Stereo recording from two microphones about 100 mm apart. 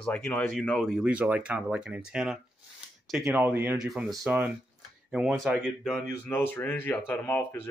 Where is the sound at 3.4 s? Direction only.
20° right (ahead or behind).